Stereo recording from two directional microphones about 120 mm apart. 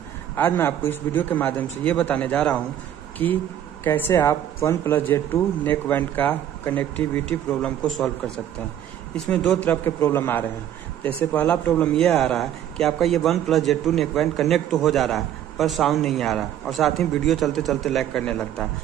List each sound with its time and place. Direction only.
0.4 s speech: 20° left (ahead or behind)
3.8 s speech: 20° left (ahead or behind)
9.1 s a man's voice: 10° left (ahead or behind)